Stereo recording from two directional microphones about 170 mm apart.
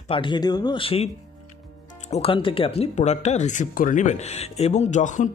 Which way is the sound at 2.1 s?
35° left (ahead or behind).